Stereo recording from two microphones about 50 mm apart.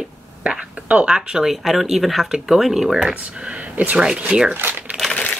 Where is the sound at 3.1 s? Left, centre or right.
Right.